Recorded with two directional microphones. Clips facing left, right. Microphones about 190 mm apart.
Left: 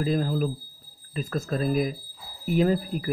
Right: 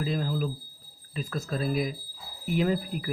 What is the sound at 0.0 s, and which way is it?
Speech, 45° left (ahead or behind).